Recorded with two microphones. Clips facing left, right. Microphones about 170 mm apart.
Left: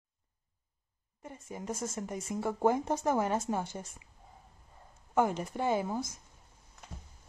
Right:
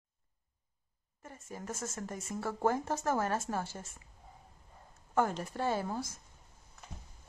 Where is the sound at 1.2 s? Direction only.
15° left (ahead or behind).